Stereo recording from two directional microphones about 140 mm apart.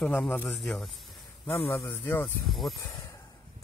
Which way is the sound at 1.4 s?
20° left (ahead or behind).